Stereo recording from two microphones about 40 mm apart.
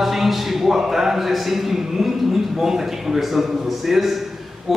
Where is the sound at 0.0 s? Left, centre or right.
Centre.